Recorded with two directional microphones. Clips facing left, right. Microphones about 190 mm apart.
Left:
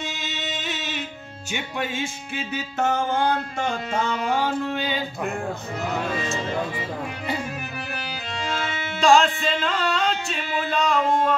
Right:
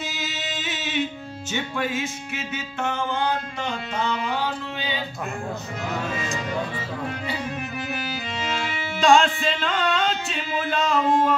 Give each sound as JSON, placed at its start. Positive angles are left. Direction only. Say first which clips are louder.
{"t": 0.0, "sound": "music", "louder": "even", "side_deg": 0}
{"t": 1.8, "sound": "music", "louder": "even", "side_deg": 30}
{"t": 9.0, "sound": "music", "louder": "even", "side_deg": 0}